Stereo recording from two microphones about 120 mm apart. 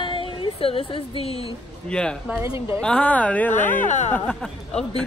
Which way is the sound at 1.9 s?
5° left (ahead or behind).